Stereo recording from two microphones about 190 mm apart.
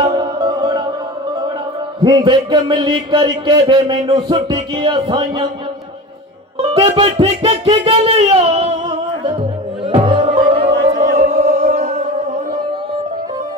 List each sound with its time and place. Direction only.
0.1 s music: 25° right (ahead or behind)
2.0 s speech: 25° right (ahead or behind)
4.4 s music: 30° right (ahead or behind)
6.7 s music: 30° right (ahead or behind)
9.8 s music: 25° right (ahead or behind)
11.0 s music: 40° right (ahead or behind)